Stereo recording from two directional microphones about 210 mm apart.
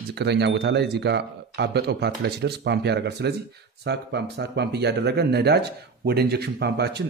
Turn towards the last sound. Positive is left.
turn(degrees=-50)  # may be behind; listen again after turning